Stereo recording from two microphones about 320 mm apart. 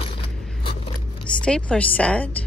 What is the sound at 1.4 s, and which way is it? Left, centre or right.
Speech, centre.